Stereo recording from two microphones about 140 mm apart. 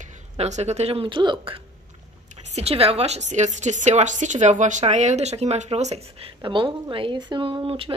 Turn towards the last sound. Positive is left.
turn(degrees=-40)  # may be behind; listen again after turning